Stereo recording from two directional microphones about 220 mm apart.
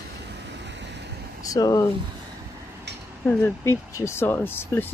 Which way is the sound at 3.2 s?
10° left (ahead or behind).